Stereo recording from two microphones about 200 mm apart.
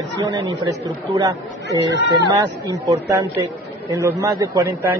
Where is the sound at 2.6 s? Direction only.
15° right (ahead or behind).